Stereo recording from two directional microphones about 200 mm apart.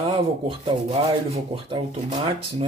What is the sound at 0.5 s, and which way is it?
Speech, 30° right (ahead or behind).